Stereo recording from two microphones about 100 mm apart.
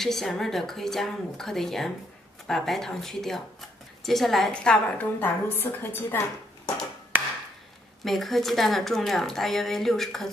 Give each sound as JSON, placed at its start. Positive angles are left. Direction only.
{"t": 0.0, "sound": "a woman's voice", "side_deg": 5}
{"t": 7.1, "sound": "wood", "side_deg": -20}
{"t": 8.0, "sound": "speech", "side_deg": 0}